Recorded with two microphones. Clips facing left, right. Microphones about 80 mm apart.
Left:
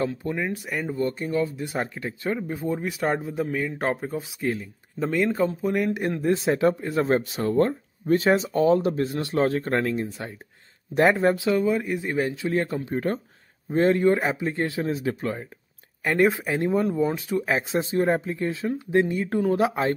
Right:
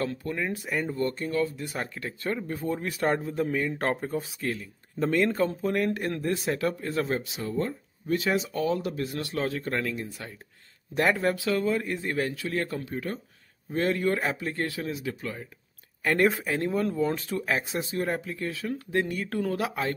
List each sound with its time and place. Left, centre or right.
0.2 s speech: centre
0.5 s speech: centre
0.8 s speech: centre
4.4 s speech: left
4.9 s speech: centre
5.9 s speech: centre
7.1 s speech: left
7.4 s speech: left
8.2 s speech: left
9.4 s speech: left
12.9 s speech: left
13.7 s speech: left
16.0 s speech: centre; by 20.0 s left